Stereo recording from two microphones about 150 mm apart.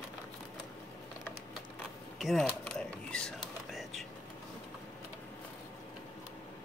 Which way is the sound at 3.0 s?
5° left (ahead or behind).